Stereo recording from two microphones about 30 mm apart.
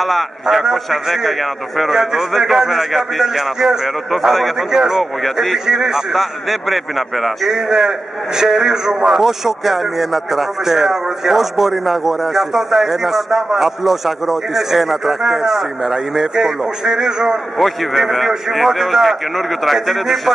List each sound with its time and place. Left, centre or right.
0.0 s a man's voice: centre
4.3 s a man's voice: centre
4.7 s a man's voice: centre
5.2 s a man's voice: centre
5.7 s a man's voice: right
6.1 s a man's voice: centre
7.4 s a man's voice: centre
9.2 s a man's voice: centre; by 17.4 s right
17.6 s a man's voice: centre